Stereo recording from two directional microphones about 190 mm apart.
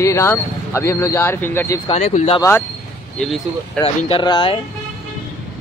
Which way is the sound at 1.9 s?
35° left (ahead or behind).